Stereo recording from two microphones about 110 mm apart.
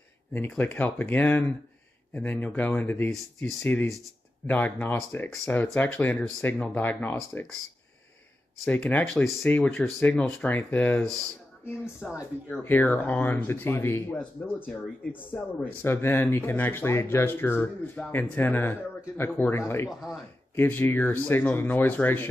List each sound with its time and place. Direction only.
0.6 s speech: 15° left (ahead or behind)
3.1 s speech: centre (ahead or behind)
3.6 s speech: 15° left (ahead or behind)
8.6 s speech: 15° left (ahead or behind)
9.0 s speech: 5° left (ahead or behind)
12.0 s speech: 10° right (ahead or behind)
12.4 s speech: 15° left (ahead or behind)